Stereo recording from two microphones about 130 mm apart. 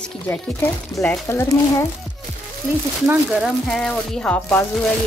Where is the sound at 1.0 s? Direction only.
20° left (ahead or behind).